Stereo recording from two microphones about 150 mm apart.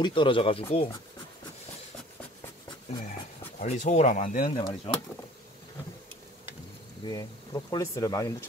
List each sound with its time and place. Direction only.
0.0 s speech: 35° left (ahead or behind)
3.5 s speech: 45° left (ahead or behind)
4.9 s speech: 45° left (ahead or behind)
7.0 s speech: 25° left (ahead or behind)